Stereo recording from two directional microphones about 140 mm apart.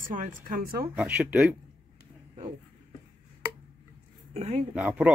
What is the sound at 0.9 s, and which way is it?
Speech, 10° right (ahead or behind).